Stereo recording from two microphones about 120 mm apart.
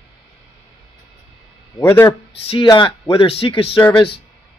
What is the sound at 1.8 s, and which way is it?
Speech, 25° left (ahead or behind).